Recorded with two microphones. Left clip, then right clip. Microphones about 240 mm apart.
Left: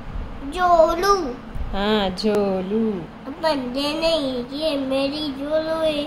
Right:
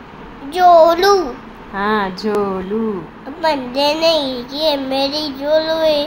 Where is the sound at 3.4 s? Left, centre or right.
Left.